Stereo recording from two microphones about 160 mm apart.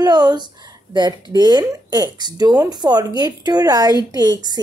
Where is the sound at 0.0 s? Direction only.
25° right (ahead or behind).